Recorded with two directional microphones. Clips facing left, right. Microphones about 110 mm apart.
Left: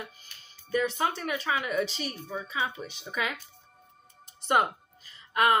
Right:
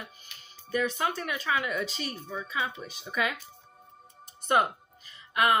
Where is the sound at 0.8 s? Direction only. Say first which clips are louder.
Left 1 dB; 25° left (ahead or behind).